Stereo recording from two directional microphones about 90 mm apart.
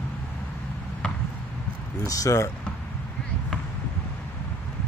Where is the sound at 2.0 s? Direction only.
40° left (ahead or behind).